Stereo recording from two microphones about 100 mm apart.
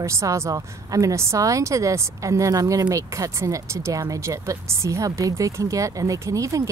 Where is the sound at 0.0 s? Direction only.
30° right (ahead or behind).